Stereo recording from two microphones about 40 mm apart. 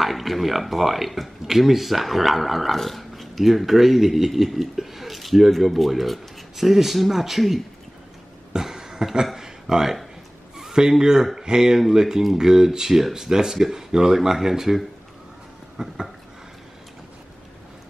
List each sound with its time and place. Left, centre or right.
0.0 s speech: centre
8.5 s a sound: centre
10.6 s speech: centre